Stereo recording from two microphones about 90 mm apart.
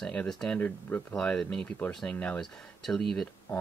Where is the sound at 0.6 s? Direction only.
20° left (ahead or behind).